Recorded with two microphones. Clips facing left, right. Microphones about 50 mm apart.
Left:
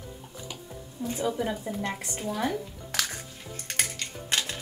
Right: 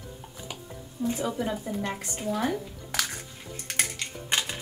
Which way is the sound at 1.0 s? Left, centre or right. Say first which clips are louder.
Even; centre.